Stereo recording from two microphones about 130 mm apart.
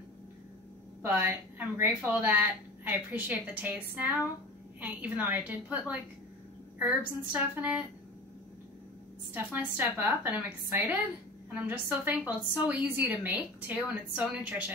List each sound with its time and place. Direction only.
1.0 s a woman's voice: 15° right (ahead or behind)
9.3 s a woman's voice: 15° right (ahead or behind)